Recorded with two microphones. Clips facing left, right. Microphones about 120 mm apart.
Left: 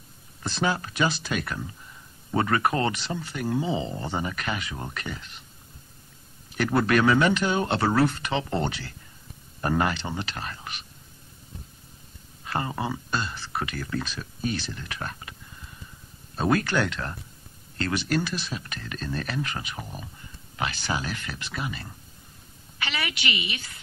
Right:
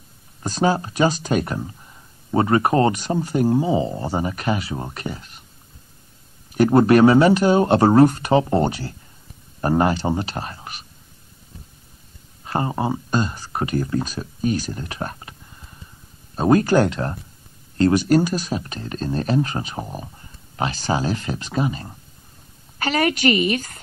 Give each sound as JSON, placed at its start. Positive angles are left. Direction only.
{"t": 0.4, "sound": "speech", "side_deg": -40}
{"t": 6.5, "sound": "speech", "side_deg": -40}
{"t": 12.4, "sound": "speech", "side_deg": -35}
{"t": 16.3, "sound": "speech", "side_deg": -35}
{"t": 22.8, "sound": "a woman's voice", "side_deg": -45}